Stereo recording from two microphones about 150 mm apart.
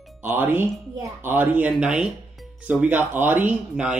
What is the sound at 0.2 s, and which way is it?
Speech, 15° right (ahead or behind).